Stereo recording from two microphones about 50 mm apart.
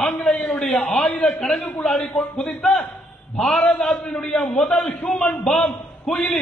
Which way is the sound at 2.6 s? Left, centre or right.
Centre.